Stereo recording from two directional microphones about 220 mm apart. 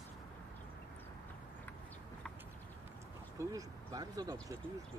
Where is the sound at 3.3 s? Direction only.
15° right (ahead or behind).